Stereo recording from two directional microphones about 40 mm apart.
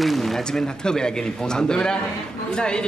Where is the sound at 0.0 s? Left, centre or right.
Centre.